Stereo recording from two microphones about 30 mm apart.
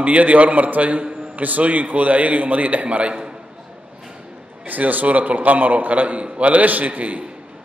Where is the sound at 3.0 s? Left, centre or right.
Right.